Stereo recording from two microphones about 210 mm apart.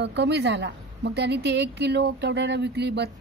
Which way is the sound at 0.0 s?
55° right (ahead or behind).